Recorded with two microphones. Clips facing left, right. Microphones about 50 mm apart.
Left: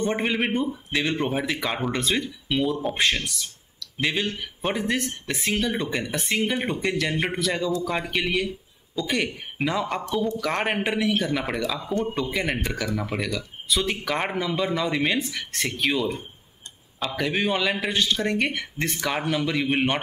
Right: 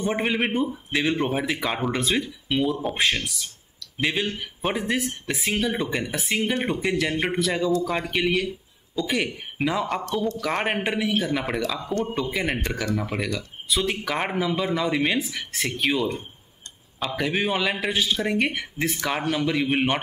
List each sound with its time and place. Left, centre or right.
0.0 s a man's voice: centre
10.0 s a man's voice: centre
10.4 s a man's voice: centre